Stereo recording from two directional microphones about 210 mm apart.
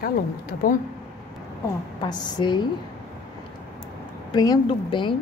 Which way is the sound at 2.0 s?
20° left (ahead or behind).